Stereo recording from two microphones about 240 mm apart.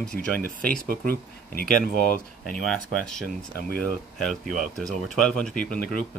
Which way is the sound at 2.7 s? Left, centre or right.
Centre.